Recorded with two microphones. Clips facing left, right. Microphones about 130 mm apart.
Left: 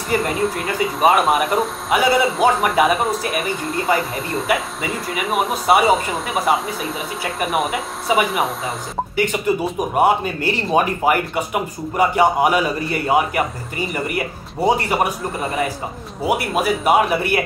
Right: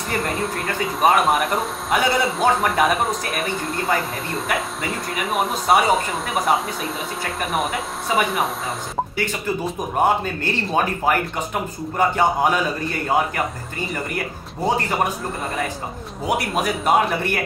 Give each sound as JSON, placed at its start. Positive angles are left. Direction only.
{"t": 0.1, "sound": "speech", "side_deg": 0}
{"t": 9.1, "sound": "speech", "side_deg": 15}
{"t": 14.0, "sound": "speech", "side_deg": 10}
{"t": 16.3, "sound": "speech", "side_deg": 5}